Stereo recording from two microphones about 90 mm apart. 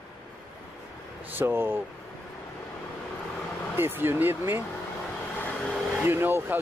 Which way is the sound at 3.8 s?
25° right (ahead or behind).